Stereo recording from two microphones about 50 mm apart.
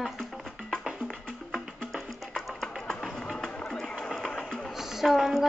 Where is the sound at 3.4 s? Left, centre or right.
Centre.